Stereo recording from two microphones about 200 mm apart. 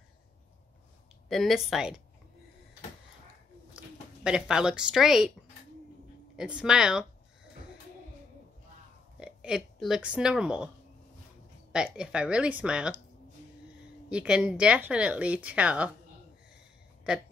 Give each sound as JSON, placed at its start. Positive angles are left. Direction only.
{"t": 1.3, "sound": "speech", "side_deg": 0}
{"t": 3.7, "sound": "speech", "side_deg": -5}
{"t": 6.3, "sound": "speech", "side_deg": -5}
{"t": 9.2, "sound": "speech", "side_deg": -5}
{"t": 11.7, "sound": "speech", "side_deg": -5}
{"t": 14.0, "sound": "speech", "side_deg": -5}